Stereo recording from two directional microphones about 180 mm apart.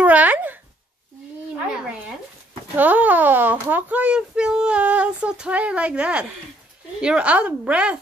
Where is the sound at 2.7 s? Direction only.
10° right (ahead or behind).